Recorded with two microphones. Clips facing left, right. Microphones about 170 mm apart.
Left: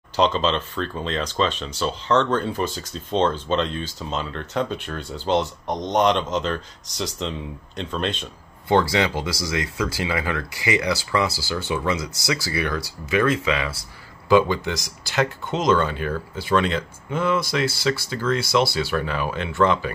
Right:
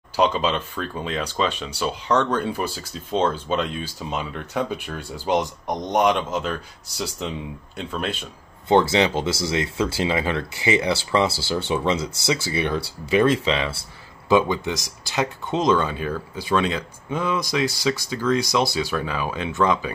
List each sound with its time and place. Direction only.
0.1 s speech: 10° right (ahead or behind)
8.6 s speech: 20° right (ahead or behind)
14.3 s speech: 20° right (ahead or behind)